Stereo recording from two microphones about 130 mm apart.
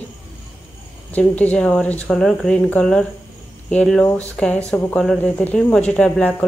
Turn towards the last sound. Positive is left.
turn(degrees=10)  # may be behind; listen again after turning